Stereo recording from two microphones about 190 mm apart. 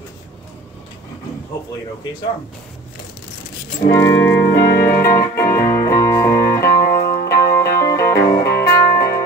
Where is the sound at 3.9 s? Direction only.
15° left (ahead or behind).